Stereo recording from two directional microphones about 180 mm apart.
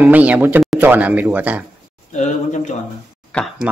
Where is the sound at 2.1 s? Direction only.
40° left (ahead or behind).